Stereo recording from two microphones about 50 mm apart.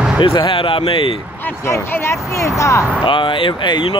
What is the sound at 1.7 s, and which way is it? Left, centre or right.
Speech, left.